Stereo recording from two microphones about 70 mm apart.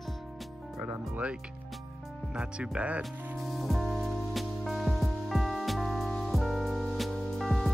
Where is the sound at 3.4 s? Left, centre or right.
Centre.